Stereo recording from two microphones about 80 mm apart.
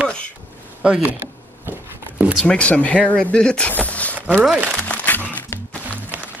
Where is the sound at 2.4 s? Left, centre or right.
Centre.